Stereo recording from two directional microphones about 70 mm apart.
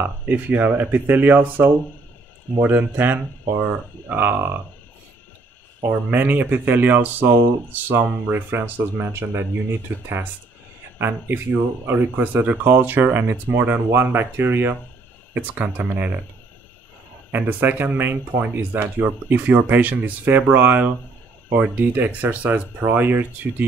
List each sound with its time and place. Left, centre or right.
0.0 s speech: right
5.9 s speech: right
17.3 s speech: right